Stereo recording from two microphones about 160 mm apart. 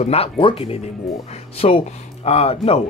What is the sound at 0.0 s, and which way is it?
Speech, 40° left (ahead or behind).